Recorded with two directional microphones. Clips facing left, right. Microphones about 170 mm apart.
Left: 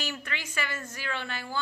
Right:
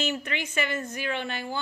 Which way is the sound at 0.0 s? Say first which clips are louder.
Right 7 dB; 20° right (ahead or behind).